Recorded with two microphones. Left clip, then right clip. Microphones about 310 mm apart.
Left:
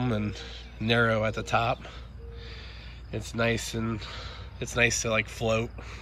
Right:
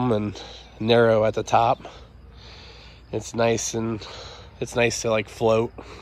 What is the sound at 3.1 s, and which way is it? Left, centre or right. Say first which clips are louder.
Speech: right 6 dB; centre.